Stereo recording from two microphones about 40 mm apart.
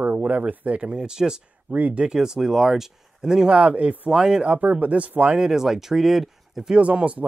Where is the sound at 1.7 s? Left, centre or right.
Right.